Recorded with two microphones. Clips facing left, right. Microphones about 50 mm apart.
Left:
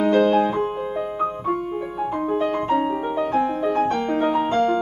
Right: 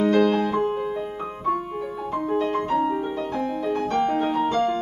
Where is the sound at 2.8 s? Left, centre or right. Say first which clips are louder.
Left 2 dB; left.